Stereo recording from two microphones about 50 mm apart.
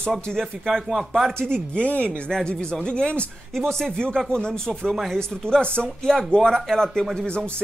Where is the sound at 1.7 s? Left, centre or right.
Left.